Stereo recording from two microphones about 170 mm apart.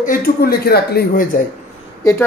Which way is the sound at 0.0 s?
60° left (ahead or behind).